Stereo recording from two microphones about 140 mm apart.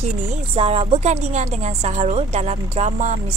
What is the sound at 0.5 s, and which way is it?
A woman's voice, 45° right (ahead or behind).